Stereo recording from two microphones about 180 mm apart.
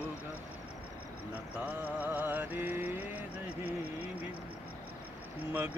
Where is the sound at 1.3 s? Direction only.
10° right (ahead or behind).